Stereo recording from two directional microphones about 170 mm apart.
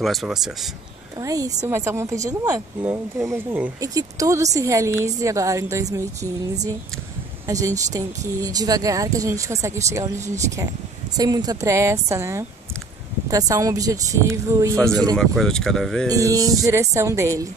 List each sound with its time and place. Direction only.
0.0 s speech: centre (ahead or behind)
1.2 s a woman's voice: 20° right (ahead or behind)
10.1 s speech: 45° right (ahead or behind)
11.1 s a woman's voice: 25° right (ahead or behind)
15.1 s speech: 5° left (ahead or behind)
16.1 s a woman's voice: 20° right (ahead or behind)